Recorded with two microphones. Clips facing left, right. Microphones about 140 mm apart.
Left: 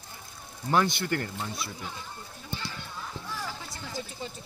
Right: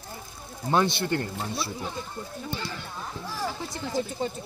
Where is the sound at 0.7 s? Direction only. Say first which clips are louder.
Right 2 dB; 25° right (ahead or behind).